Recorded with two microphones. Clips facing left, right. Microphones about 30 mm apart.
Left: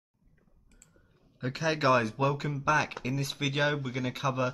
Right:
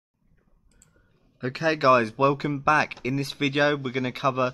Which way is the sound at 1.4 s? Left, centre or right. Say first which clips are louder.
Right 6 dB; right.